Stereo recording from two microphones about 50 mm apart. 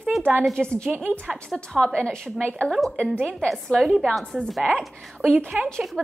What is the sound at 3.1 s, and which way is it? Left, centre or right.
A woman's voice, centre.